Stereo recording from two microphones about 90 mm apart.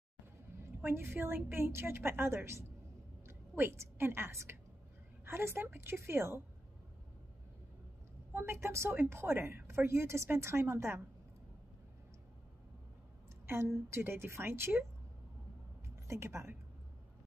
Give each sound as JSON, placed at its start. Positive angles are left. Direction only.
{"t": 0.8, "sound": "a woman's voice", "side_deg": -25}
{"t": 8.3, "sound": "a woman's voice", "side_deg": -25}
{"t": 13.8, "sound": "a woman's voice", "side_deg": -25}
{"t": 16.1, "sound": "a woman's voice", "side_deg": -30}